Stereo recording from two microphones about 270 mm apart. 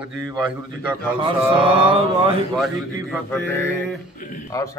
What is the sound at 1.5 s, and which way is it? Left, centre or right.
Mantra, centre.